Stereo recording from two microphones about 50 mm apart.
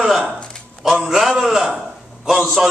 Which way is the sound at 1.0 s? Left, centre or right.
Centre.